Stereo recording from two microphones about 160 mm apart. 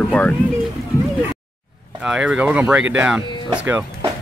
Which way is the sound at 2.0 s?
5° right (ahead or behind).